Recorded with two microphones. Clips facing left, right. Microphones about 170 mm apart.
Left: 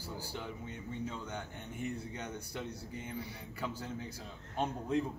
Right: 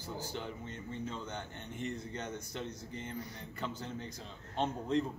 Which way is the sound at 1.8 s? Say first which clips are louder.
Even; 10° left (ahead or behind).